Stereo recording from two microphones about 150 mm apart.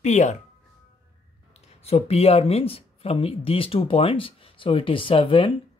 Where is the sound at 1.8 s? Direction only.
40° left (ahead or behind).